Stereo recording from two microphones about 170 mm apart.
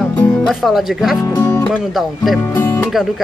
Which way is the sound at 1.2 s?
15° left (ahead or behind).